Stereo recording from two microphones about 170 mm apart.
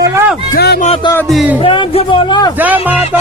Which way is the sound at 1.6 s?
30° left (ahead or behind).